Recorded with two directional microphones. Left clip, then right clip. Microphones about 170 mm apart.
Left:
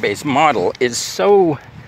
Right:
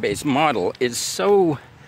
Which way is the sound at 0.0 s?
35° right (ahead or behind).